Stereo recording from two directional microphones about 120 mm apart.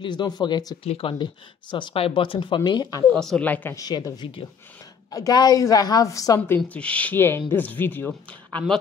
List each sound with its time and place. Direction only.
0.0 s speech: 40° left (ahead or behind)
0.8 s speech: 50° left (ahead or behind); by 3.1 s 30° left (ahead or behind)
3.1 s speech: 5° left (ahead or behind)
3.7 s speech: 30° left (ahead or behind)
6.7 s speech: 10° left (ahead or behind)